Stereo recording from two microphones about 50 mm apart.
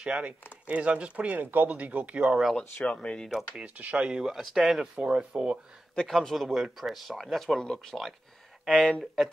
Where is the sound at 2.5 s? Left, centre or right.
Centre.